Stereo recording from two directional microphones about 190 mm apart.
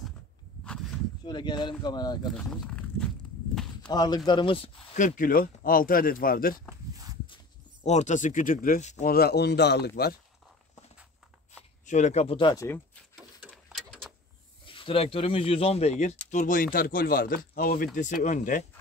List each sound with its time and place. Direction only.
1.2 s speech: 25° left (ahead or behind)
2.3 s speech: 5° left (ahead or behind)
3.9 s speech: 20° left (ahead or behind)
4.9 s speech: 45° left (ahead or behind)
6.9 s walk: 20° right (ahead or behind)
7.8 s speech: 40° left (ahead or behind)
9.1 s speech: 55° left (ahead or behind)
11.8 s speech: 40° left (ahead or behind)
13.1 s a sound: 5° right (ahead or behind)
14.7 s speech: 30° left (ahead or behind)